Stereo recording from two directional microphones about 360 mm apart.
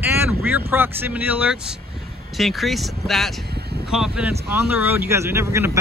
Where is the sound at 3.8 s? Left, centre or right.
Centre.